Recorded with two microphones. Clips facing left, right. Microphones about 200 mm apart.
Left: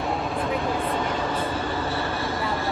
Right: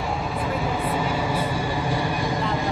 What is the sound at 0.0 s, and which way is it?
Vehicle, centre (ahead or behind).